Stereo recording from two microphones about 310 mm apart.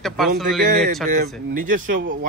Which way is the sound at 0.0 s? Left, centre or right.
Centre.